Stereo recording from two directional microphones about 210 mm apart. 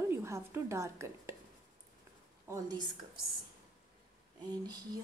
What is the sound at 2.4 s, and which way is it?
Speech, 15° right (ahead or behind).